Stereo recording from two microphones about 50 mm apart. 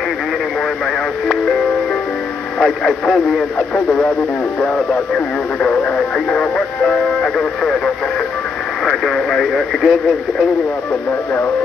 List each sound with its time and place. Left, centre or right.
2.6 s speech: centre
3.5 s speech: left; by 9.9 s centre